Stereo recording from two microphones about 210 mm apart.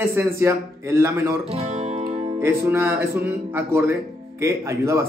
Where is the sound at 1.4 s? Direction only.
30° right (ahead or behind).